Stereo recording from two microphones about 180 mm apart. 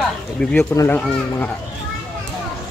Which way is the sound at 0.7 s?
15° left (ahead or behind).